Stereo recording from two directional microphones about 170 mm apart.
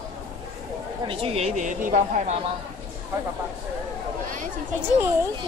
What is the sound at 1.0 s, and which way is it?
Speech, 35° right (ahead or behind).